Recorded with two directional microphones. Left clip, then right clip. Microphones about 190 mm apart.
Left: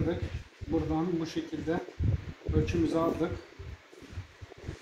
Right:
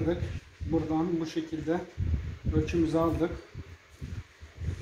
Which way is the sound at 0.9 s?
10° left (ahead or behind).